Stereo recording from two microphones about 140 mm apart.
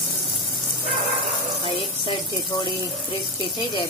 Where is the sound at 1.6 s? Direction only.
40° left (ahead or behind).